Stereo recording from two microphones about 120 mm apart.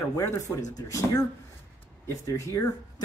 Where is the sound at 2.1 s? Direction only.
25° left (ahead or behind).